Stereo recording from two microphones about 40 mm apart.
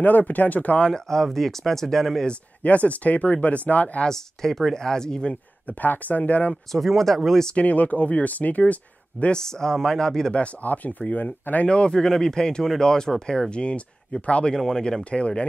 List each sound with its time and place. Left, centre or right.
0.0 s speech: left
0.8 s speech: centre
2.6 s speech: left
4.0 s speech: centre
5.7 s speech: left
6.5 s speech: centre
7.5 s speech: left
9.3 s speech: centre
10.3 s speech: left
11.6 s speech: left
14.6 s speech: centre